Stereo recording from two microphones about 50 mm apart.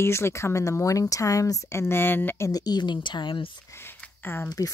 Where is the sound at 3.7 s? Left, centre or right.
Left.